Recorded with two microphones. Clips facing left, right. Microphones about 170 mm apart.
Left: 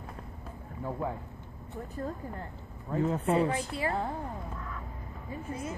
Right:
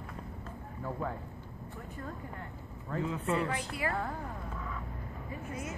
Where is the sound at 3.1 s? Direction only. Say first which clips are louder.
Left 5 dB; 30° left (ahead or behind).